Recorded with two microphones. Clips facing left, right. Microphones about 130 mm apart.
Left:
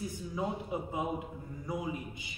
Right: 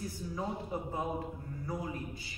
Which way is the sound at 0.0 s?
15° left (ahead or behind).